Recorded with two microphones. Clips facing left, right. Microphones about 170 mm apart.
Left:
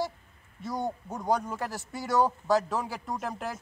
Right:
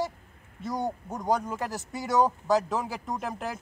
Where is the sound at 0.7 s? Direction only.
15° right (ahead or behind).